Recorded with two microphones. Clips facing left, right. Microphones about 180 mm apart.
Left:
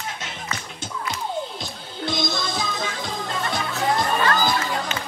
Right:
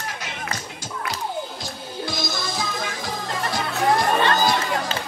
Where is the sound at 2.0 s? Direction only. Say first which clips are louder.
Left 4 dB; 25° left (ahead or behind).